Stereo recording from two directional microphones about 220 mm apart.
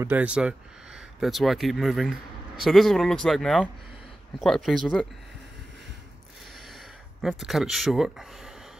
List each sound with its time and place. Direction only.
0.0 s speech: 5° right (ahead or behind)
7.2 s speech: centre (ahead or behind)